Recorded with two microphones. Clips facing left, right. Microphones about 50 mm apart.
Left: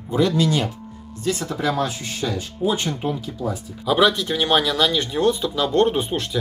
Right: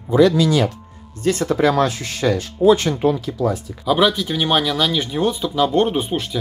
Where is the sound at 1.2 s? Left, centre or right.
Right.